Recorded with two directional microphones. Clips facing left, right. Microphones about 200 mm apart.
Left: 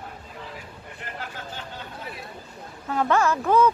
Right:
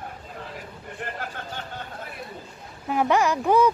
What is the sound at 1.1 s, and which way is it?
Chatter, 50° right (ahead or behind).